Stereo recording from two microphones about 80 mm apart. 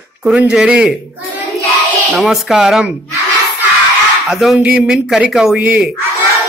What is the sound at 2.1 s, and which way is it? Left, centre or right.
Speech, centre.